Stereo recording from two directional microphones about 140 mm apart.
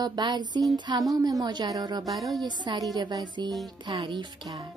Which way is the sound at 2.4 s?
30° right (ahead or behind).